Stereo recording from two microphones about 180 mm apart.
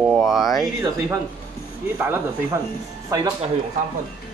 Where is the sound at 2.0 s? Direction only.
10° right (ahead or behind).